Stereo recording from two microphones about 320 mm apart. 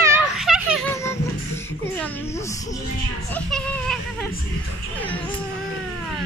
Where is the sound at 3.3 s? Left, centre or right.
Centre.